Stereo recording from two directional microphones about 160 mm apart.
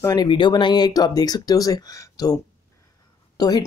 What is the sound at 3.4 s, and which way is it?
Speech, 25° left (ahead or behind).